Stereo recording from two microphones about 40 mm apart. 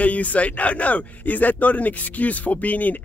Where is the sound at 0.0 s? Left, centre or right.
Left.